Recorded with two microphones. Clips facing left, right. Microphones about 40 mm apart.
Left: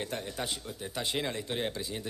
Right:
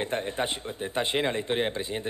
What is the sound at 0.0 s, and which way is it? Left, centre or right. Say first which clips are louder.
Speech: right 7 dB; right.